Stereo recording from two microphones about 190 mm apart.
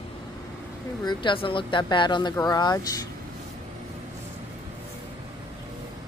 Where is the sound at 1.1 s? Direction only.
25° left (ahead or behind).